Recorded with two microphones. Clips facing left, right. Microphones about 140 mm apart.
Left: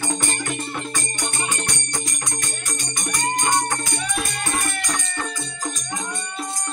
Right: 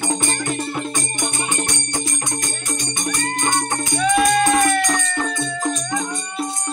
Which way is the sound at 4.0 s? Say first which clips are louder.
Right 12 dB; 90° right.